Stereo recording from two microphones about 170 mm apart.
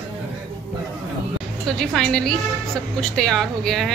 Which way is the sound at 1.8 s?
5° left (ahead or behind).